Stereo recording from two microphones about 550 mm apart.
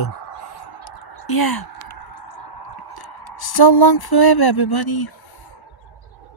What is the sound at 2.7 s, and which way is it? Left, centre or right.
Speech, left.